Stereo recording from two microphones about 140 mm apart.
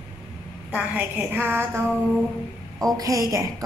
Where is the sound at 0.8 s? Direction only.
10° right (ahead or behind).